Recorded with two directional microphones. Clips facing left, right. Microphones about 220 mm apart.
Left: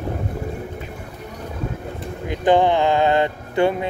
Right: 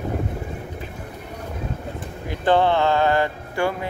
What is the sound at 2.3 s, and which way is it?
Speech, 15° left (ahead or behind).